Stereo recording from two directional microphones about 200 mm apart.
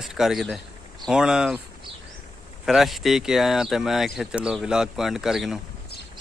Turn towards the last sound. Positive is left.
turn(degrees=0)  # may be behind; listen again after turning